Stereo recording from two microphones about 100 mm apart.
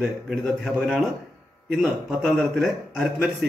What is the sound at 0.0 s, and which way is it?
A man's voice, 5° right (ahead or behind).